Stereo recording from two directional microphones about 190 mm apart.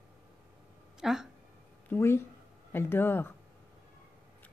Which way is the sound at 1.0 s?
Centre (ahead or behind).